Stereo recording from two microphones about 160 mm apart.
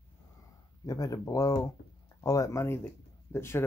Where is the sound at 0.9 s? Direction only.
20° left (ahead or behind).